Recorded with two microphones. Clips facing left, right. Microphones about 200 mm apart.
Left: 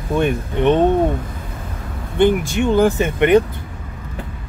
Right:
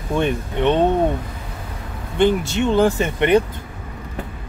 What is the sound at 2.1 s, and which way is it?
Speech, 15° left (ahead or behind).